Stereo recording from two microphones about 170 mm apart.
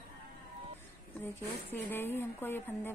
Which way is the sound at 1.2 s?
10° left (ahead or behind).